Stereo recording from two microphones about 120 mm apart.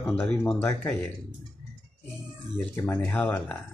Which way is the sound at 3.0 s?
10° left (ahead or behind).